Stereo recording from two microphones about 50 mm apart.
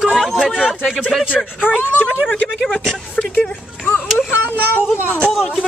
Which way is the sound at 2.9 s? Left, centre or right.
Centre.